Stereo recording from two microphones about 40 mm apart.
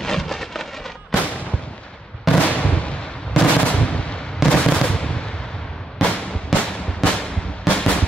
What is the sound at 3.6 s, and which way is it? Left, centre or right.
Gunshot, left.